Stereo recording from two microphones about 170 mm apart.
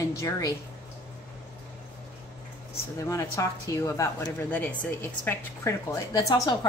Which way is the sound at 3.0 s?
20° left (ahead or behind).